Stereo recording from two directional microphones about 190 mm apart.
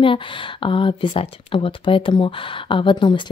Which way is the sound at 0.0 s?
25° left (ahead or behind).